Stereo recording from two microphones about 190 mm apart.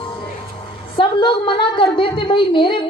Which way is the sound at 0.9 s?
25° left (ahead or behind).